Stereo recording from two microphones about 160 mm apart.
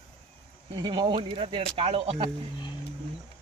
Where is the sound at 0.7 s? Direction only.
25° right (ahead or behind).